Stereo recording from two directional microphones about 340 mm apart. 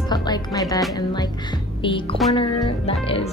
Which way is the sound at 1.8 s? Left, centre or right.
Centre.